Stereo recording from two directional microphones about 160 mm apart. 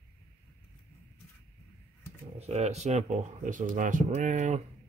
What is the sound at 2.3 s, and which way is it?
Speech, 45° right (ahead or behind).